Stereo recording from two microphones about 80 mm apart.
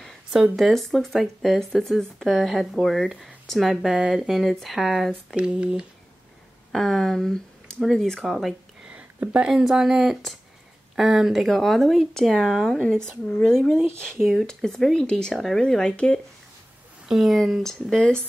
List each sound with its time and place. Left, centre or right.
0.3 s speech: centre
3.9 s speech: centre
5.3 s speech: centre
6.7 s speech: centre
8.8 s a sound: centre
9.5 s speech: centre
17.1 s speech: centre